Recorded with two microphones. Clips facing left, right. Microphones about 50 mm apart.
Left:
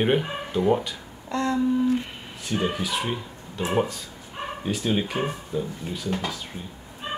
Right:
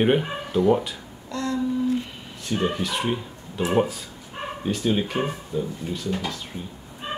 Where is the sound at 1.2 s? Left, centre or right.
Left.